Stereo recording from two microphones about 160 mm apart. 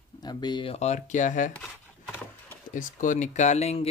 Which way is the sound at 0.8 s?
45° left (ahead or behind).